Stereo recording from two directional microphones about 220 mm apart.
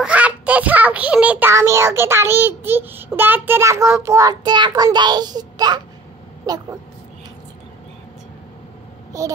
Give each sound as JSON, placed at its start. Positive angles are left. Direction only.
{"t": 0.0, "sound": "a child's voice", "side_deg": -5}
{"t": 9.1, "sound": "speech", "side_deg": -15}